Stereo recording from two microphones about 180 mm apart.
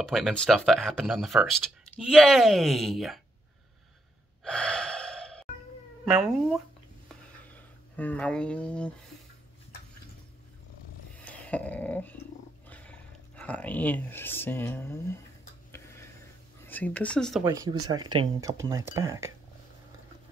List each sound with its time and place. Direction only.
0.0 s speech: centre (ahead or behind)
4.5 s gasp: 5° left (ahead or behind)
6.0 s speech: 5° right (ahead or behind)
7.9 s speech: 10° left (ahead or behind)
11.1 s dog: 5° left (ahead or behind)
12.6 s roaring cats: 10° left (ahead or behind)
13.4 s speech: 10° left (ahead or behind)
16.6 s a woman's voice: 10° left (ahead or behind)
17.5 s speech: 25° right (ahead or behind)